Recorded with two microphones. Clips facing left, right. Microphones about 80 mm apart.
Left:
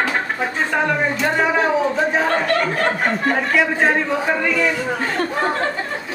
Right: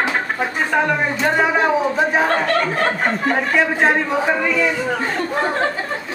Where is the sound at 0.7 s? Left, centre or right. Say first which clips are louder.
Right 2 dB; centre.